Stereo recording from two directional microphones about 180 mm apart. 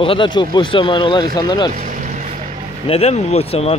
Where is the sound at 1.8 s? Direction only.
45° right (ahead or behind).